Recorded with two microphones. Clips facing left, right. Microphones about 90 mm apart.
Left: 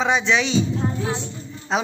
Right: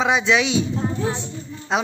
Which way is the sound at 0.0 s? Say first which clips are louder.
Right 1 dB; centre (ahead or behind).